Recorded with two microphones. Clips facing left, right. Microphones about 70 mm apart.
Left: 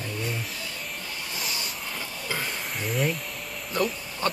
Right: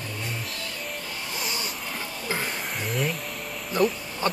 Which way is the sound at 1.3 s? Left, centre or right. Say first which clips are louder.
Right 3 dB; centre.